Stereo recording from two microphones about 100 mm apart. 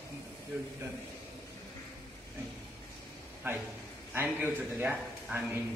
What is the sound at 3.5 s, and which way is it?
A man's voice, 20° right (ahead or behind).